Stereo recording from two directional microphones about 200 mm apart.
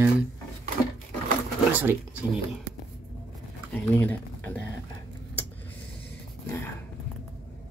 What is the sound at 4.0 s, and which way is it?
Speech, 10° left (ahead or behind).